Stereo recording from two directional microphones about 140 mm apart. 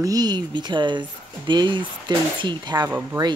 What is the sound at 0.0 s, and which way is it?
Speech, 25° right (ahead or behind).